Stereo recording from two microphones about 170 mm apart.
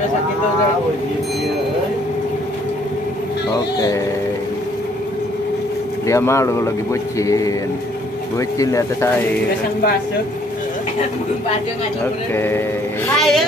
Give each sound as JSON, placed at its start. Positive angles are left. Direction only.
{"t": 3.5, "sound": "speech", "side_deg": 20}
{"t": 6.0, "sound": "a man's voice", "side_deg": 15}
{"t": 12.4, "sound": "a man's voice", "side_deg": 15}
{"t": 13.1, "sound": "speech", "side_deg": 0}